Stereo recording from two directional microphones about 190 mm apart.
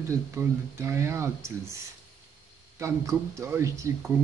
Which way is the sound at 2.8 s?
15° right (ahead or behind).